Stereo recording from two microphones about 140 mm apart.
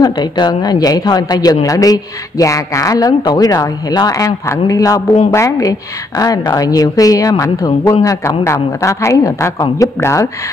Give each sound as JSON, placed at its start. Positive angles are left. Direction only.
{"t": 0.0, "sound": "a woman's voice", "side_deg": 30}